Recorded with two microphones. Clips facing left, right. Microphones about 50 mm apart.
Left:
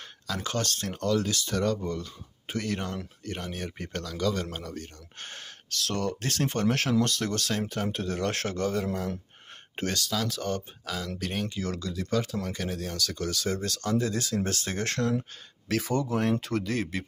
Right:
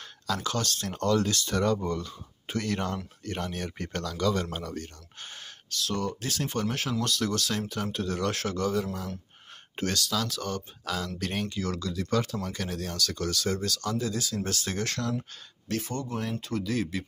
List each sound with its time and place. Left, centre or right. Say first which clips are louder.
0.4 s speech: even; left
0.9 s speech: right 2 dB; centre
1.5 s speech: right 1 dB; centre
1.9 s speech: right 2 dB; centre
5.2 s speech: left 1 dB; left
7.0 s speech: left 1 dB; left
9.8 s speech: right 1 dB; left
10.9 s speech: right 1 dB; centre
11.5 s speech: right 1 dB; left
13.6 s speech: left 2 dB; left
15.7 s speech: left 5 dB; left
16.6 s speech: even; left